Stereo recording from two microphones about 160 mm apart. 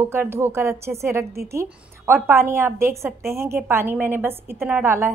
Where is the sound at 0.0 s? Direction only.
15° right (ahead or behind).